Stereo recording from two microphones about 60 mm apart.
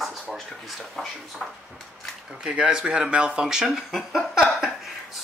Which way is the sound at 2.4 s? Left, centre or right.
Centre.